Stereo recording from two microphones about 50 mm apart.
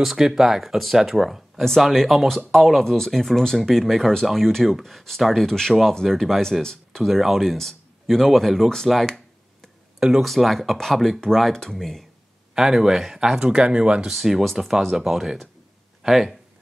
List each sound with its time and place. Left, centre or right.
0.0 s speech: centre
6.6 s speech: centre
7.0 s speech: centre
9.0 s a sound: centre
9.9 s speech: centre
10.2 s speech: centre
12.5 s speech: centre
13.4 s speech: right
14.1 s speech: centre